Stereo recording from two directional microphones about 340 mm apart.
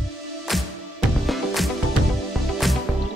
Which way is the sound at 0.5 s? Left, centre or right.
Centre.